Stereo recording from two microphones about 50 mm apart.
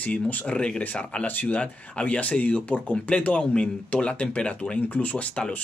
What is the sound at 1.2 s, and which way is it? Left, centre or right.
Speech, left.